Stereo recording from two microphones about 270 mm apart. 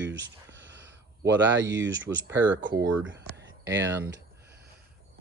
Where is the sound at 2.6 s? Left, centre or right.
Right.